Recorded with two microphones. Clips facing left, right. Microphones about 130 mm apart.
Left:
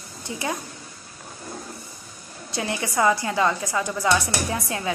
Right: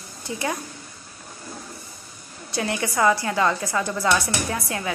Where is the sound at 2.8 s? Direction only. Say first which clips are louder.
Even; 20° left (ahead or behind).